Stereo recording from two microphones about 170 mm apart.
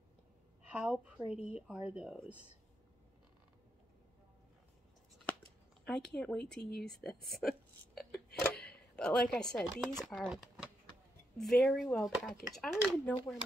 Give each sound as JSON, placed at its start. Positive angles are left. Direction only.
{"t": 0.7, "sound": "speech", "side_deg": -5}
{"t": 5.9, "sound": "speech", "side_deg": 5}
{"t": 6.6, "sound": "speech", "side_deg": 65}
{"t": 7.1, "sound": "a woman's voice", "side_deg": 0}
{"t": 8.4, "sound": "a sound", "side_deg": 5}
{"t": 9.3, "sound": "speech", "side_deg": 5}